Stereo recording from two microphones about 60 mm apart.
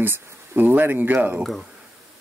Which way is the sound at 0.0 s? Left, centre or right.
Right.